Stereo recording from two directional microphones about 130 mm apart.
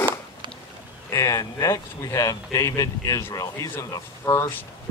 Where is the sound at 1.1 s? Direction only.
25° left (ahead or behind).